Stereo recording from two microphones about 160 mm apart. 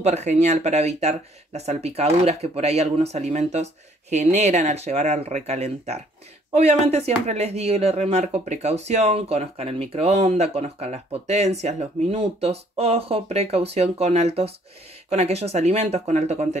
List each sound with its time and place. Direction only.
0.0 s speech: 45° right (ahead or behind)